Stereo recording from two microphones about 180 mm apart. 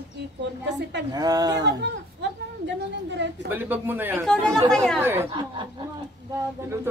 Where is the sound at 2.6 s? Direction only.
75° right (ahead or behind).